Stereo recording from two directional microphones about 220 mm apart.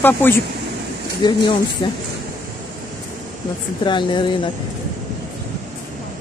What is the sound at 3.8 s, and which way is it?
Speech, 20° left (ahead or behind).